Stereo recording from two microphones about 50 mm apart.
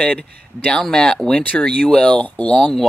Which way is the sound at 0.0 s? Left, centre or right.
Centre.